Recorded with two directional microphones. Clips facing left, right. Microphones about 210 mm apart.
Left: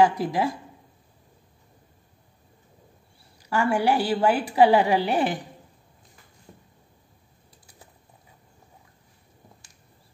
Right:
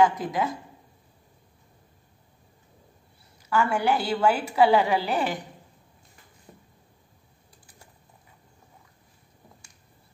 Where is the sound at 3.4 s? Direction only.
35° left (ahead or behind).